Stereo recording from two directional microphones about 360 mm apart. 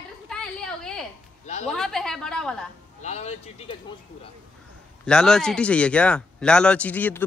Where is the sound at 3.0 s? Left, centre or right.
Centre.